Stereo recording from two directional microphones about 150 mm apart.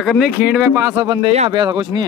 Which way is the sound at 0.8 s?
25° right (ahead or behind).